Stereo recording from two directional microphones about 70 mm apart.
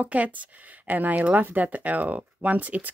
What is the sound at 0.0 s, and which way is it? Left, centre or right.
Speech, right.